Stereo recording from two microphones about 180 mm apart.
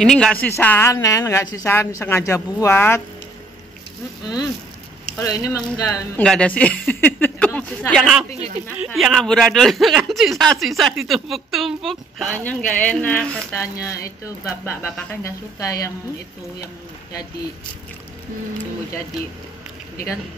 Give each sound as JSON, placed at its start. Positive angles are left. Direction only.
{"t": 0.0, "sound": "a woman's voice", "side_deg": 5}
{"t": 5.2, "sound": "speech", "side_deg": 20}
{"t": 6.2, "sound": "a woman's voice", "side_deg": 5}